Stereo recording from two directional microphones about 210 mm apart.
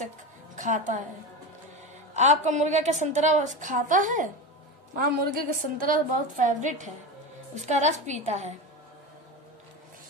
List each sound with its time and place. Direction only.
0.6 s a woman's voice: 35° right (ahead or behind)
2.1 s a woman's voice: 35° right (ahead or behind)